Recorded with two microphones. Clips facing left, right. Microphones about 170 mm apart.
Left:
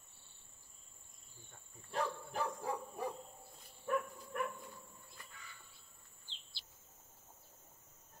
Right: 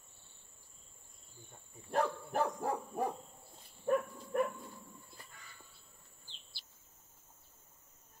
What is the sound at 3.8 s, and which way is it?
Dog, 30° right (ahead or behind).